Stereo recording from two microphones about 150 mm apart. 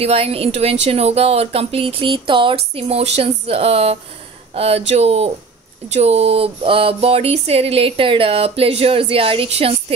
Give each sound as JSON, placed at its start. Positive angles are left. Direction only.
{"t": 0.0, "sound": "speech", "side_deg": -40}